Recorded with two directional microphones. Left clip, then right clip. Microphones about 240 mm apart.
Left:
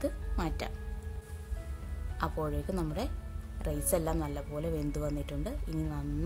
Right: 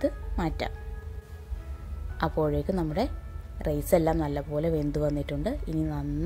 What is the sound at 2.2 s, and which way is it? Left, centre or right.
Speech, centre.